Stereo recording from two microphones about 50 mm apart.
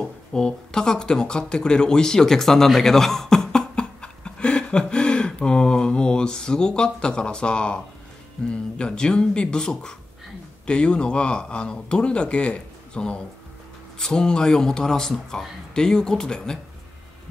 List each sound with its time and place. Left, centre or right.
0.3 s speech: centre